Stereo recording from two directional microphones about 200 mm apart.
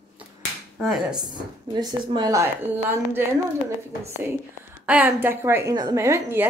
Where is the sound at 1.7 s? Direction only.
20° right (ahead or behind).